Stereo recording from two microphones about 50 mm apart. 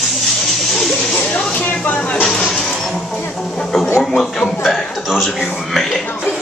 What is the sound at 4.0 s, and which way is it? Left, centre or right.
Speech, centre.